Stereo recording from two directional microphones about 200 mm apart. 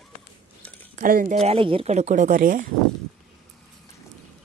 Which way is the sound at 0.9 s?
45° right (ahead or behind).